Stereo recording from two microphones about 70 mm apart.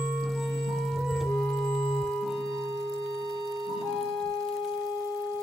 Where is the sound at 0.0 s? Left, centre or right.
Centre.